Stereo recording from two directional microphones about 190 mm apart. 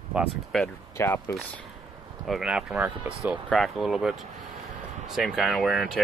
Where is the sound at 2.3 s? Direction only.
5° right (ahead or behind).